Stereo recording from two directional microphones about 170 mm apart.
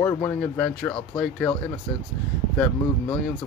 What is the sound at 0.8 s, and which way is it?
Speech, 20° left (ahead or behind).